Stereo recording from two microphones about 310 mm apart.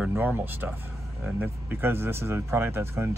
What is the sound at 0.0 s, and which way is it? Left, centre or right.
Speech, centre.